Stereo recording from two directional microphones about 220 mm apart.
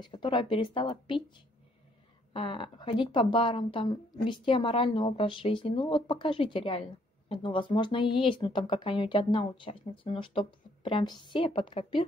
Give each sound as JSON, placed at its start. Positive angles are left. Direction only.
{"t": 0.0, "sound": "speech", "side_deg": 20}
{"t": 2.3, "sound": "speech", "side_deg": 20}